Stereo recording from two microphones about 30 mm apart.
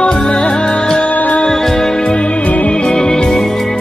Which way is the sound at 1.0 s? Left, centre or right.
Left.